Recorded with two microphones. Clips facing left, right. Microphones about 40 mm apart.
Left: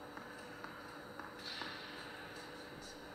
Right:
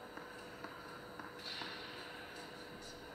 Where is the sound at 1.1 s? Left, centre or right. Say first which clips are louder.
Even; centre.